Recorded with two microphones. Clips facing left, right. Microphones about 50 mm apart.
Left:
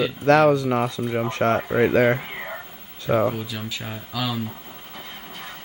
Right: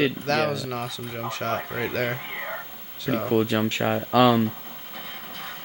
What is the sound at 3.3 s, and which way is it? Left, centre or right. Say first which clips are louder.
Speech: right 9 dB; right.